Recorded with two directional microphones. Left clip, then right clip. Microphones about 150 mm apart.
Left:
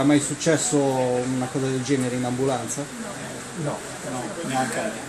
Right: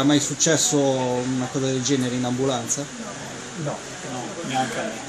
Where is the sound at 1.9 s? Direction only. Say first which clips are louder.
Left 1 dB; 55° right (ahead or behind).